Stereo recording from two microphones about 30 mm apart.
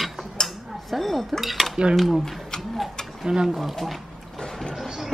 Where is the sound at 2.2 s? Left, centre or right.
Centre.